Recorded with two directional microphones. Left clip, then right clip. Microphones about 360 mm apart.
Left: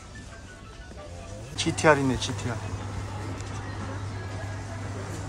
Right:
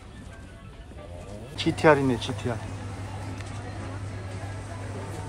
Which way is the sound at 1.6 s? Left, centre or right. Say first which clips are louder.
Right 1 dB; centre.